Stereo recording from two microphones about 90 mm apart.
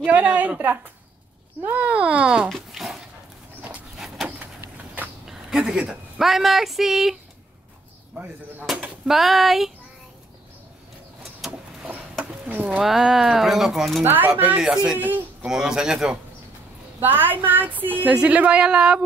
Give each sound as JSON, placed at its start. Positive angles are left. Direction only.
{"t": 0.0, "sound": "speech", "side_deg": -15}
{"t": 2.5, "sound": "dog", "side_deg": -5}
{"t": 3.9, "sound": "a sound", "side_deg": -5}
{"t": 4.4, "sound": "vehicle", "side_deg": -20}
{"t": 5.2, "sound": "a woman's voice", "side_deg": -5}
{"t": 8.7, "sound": "speech", "side_deg": 0}
{"t": 11.4, "sound": "vehicle", "side_deg": -5}
{"t": 11.9, "sound": "a sound", "side_deg": -20}
{"t": 12.8, "sound": "speech", "side_deg": -5}
{"t": 14.0, "sound": "speech", "side_deg": -25}
{"t": 14.6, "sound": "speech", "side_deg": -10}
{"t": 17.0, "sound": "speech", "side_deg": -20}